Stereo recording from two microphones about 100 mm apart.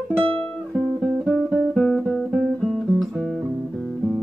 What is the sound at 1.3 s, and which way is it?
Guitar, 5° right (ahead or behind).